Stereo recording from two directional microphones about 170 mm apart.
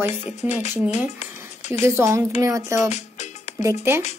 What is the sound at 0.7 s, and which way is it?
Speech, 10° right (ahead or behind).